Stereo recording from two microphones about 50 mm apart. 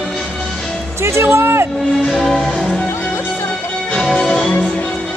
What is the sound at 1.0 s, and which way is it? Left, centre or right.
Speech, right.